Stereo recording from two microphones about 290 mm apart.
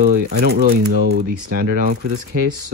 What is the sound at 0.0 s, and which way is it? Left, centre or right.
Speech, right.